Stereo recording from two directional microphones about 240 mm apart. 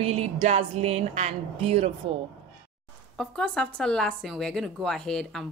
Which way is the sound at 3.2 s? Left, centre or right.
Centre.